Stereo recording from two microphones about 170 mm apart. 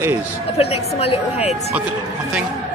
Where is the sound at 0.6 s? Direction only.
35° left (ahead or behind).